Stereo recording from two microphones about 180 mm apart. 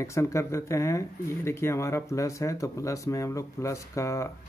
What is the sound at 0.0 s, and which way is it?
Speech, 15° left (ahead or behind).